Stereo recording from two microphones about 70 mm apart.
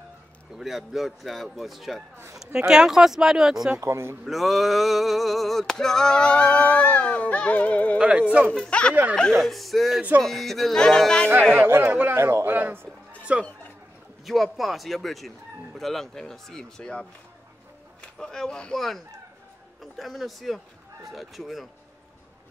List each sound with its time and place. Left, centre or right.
0.6 s speech: centre
3.8 s speech: right
4.2 s a sound: centre; by 8.0 s left
8.0 s speech: centre
8.5 s a sound: centre
9.4 s speech: centre
11.6 s speech: right
11.9 s a man's voice: right
12.2 s speech: right
12.4 s a man's voice: right
13.3 s speech: centre
14.2 s speech: centre
18.1 s a sound: centre
19.8 s speech: centre